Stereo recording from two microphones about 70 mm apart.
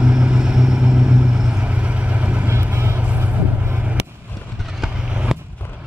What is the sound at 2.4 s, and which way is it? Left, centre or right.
Vehicle, right.